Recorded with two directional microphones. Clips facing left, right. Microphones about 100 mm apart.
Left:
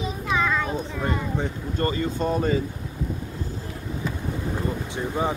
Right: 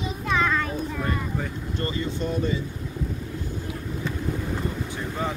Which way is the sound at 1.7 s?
40° left (ahead or behind).